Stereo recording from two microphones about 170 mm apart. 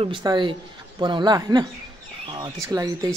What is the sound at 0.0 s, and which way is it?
Speech, 25° right (ahead or behind).